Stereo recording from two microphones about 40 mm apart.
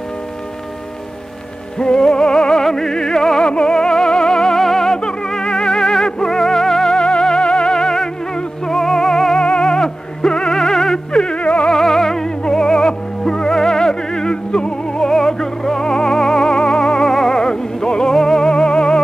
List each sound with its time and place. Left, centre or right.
1.8 s music: centre
9.4 s music: left
11.2 s music: left
11.7 s music: centre